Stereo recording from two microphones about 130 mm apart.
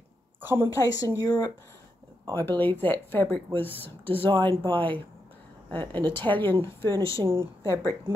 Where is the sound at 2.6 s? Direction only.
15° left (ahead or behind).